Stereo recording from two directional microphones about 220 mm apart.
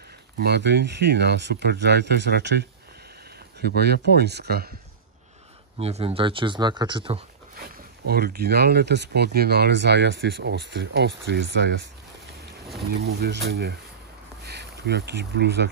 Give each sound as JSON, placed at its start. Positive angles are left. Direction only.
{"t": 0.4, "sound": "speech", "side_deg": -50}
{"t": 3.6, "sound": "speech", "side_deg": -45}
{"t": 5.8, "sound": "speech", "side_deg": -30}
{"t": 7.6, "sound": "speech", "side_deg": -45}
{"t": 13.0, "sound": "speech", "side_deg": -45}